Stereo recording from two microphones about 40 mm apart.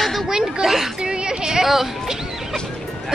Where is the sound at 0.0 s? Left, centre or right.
Centre.